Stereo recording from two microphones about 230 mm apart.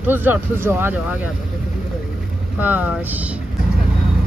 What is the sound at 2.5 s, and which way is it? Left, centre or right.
Speech, centre.